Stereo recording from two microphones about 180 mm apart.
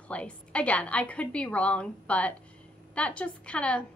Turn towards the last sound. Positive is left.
turn(degrees=5)  # may be behind; listen again after turning